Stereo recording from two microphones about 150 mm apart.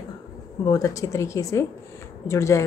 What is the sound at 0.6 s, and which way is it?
A woman's voice, 25° left (ahead or behind).